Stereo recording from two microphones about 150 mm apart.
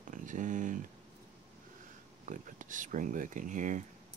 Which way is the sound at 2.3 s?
60° right (ahead or behind).